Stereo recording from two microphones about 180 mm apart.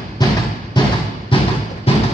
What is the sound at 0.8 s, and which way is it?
Thump, 25° left (ahead or behind).